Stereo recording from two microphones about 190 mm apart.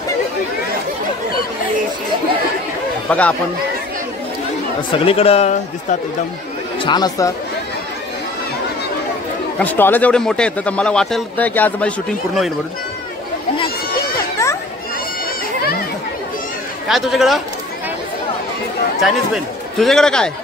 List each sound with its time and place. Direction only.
3.1 s a man's voice: 5° left (ahead or behind)
4.9 s speech: 30° left (ahead or behind)
6.8 s speech: 20° left (ahead or behind)
9.6 s a man's voice: 10° left (ahead or behind)
13.6 s a sound: 20° left (ahead or behind)
16.8 s speech: centre (ahead or behind)
18.9 s speech: centre (ahead or behind)